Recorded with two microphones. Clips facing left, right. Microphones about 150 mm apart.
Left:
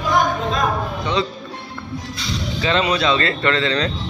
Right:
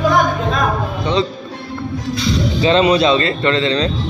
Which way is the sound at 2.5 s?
25° right (ahead or behind).